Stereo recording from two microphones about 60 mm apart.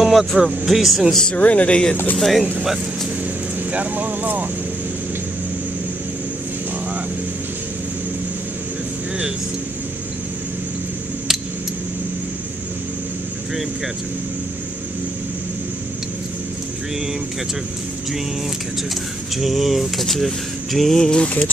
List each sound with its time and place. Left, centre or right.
0.0 s speech: centre
1.3 s speech: left
2.1 s speech: centre
3.7 s speech: right
19.3 s speech: centre